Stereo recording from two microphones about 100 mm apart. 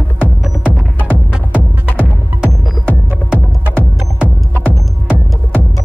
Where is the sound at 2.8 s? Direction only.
20° right (ahead or behind).